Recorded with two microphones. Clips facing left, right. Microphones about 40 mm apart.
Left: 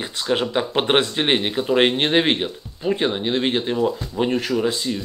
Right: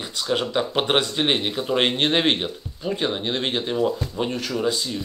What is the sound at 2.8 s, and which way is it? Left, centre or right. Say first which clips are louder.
Speech: left 4 dB; centre.